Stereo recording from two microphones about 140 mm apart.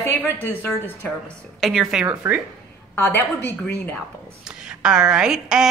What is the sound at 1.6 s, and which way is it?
Speech, centre (ahead or behind).